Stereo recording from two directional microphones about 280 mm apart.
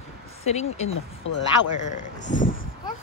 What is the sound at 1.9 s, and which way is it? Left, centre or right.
Speech, left.